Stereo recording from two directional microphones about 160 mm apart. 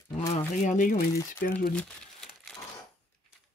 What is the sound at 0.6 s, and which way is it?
Speech, 55° left (ahead or behind).